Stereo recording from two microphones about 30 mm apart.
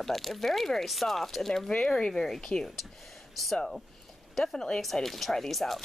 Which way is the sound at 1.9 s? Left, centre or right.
Centre.